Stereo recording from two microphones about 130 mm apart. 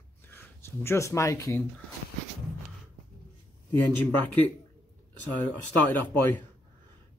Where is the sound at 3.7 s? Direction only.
15° left (ahead or behind).